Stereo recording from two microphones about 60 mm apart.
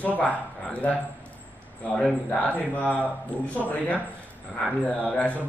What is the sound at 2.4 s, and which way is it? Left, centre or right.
A man's voice, left.